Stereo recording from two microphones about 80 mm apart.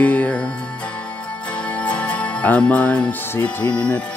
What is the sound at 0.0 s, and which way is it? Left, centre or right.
Music, centre.